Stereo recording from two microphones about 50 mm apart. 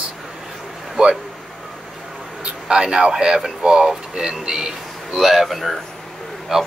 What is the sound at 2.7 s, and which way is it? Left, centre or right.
Speech, centre.